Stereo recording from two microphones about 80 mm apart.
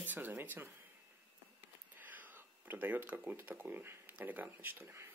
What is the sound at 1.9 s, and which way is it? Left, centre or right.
Speech, right.